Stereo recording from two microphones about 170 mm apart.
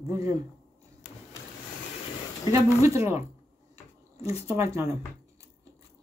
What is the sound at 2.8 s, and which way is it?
Speech, 15° right (ahead or behind).